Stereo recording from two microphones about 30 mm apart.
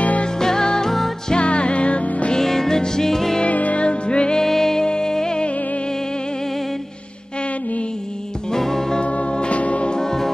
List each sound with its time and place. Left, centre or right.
0.4 s music: centre
1.3 s music: left
2.3 s music: centre
3.4 s music: left
3.8 s music: left
4.4 s music: centre
4.8 s music: left
8.5 s music: centre
9.0 s music: left
9.9 s music: centre